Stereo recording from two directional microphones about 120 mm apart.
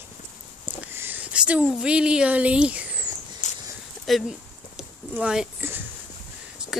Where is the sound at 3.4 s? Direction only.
90° left.